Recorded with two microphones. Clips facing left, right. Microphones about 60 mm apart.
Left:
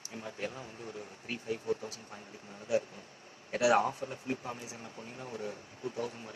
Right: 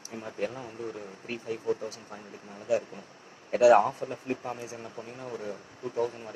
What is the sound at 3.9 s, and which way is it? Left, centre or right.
Speech, right.